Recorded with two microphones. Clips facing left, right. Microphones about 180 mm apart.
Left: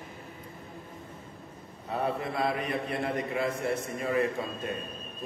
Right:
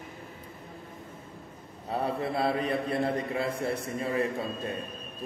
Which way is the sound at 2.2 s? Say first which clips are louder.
Right 2 dB; 30° right (ahead or behind).